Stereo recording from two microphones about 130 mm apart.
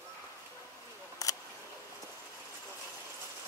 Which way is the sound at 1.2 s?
25° left (ahead or behind).